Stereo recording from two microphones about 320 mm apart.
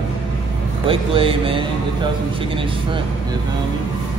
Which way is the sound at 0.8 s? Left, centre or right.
Centre.